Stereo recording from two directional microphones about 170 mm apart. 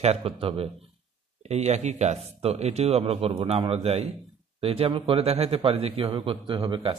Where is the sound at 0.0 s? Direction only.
35° right (ahead or behind).